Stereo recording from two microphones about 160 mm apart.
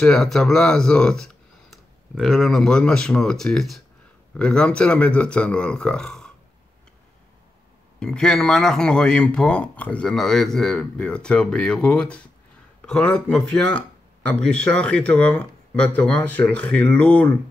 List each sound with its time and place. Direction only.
0.0 s speech: 5° left (ahead or behind)
8.0 s speech: 5° left (ahead or behind)